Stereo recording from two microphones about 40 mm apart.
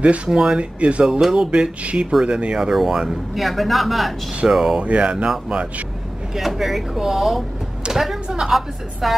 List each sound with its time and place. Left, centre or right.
0.3 s speech: centre
0.6 s speech: right
1.2 s speech: centre
2.7 s speech: centre
4.7 s speech: right
6.3 s speech: centre